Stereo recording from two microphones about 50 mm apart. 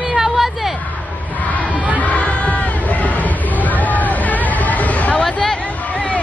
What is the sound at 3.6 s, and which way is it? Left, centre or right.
Hubbub, left.